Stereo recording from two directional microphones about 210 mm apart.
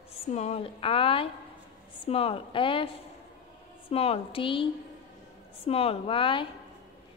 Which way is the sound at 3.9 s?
30° left (ahead or behind).